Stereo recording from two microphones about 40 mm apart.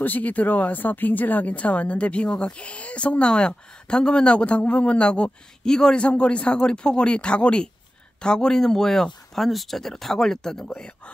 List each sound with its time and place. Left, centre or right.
0.0 s speech: left
1.5 s a woman's voice: left; by 5.9 s centre
5.9 s a woman's voice: left